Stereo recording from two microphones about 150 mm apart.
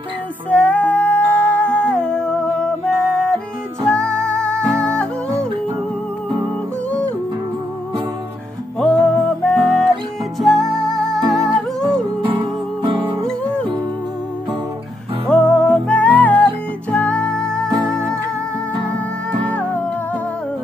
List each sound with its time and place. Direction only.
0.5 s music: 10° left (ahead or behind)
8.7 s music: 5° left (ahead or behind)
11.1 s music: 25° right (ahead or behind)
15.2 s music: 5° left (ahead or behind)
17.6 s music: 20° right (ahead or behind)